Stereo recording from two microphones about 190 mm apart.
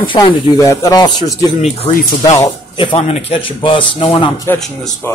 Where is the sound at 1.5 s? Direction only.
30° left (ahead or behind).